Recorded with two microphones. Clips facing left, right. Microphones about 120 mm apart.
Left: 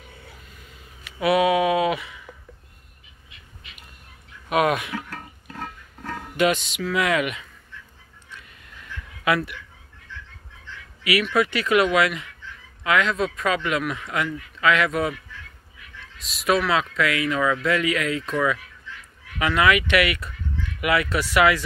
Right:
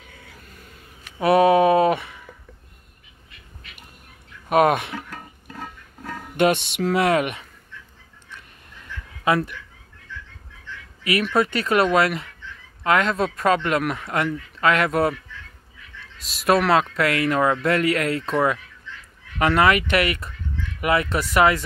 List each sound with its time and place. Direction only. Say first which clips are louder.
1.2 s a sound: right 4 dB; 40° right (ahead or behind)
4.5 s speech: right 4 dB; 45° right (ahead or behind)
5.1 s pig: even; 5° right (ahead or behind)
6.3 s speech: right 2 dB; 50° right (ahead or behind)
9.2 s speech: right 2 dB; 35° right (ahead or behind)
11.3 s speech: right 1 dB; 35° right (ahead or behind)
16.4 s speech: right 3 dB; 45° right (ahead or behind)